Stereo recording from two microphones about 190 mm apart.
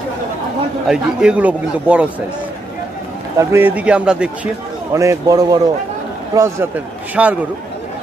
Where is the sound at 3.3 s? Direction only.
10° right (ahead or behind).